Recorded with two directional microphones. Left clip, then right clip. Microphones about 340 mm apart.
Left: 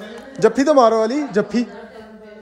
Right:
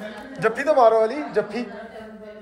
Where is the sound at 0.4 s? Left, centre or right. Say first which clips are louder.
Left 4 dB; centre.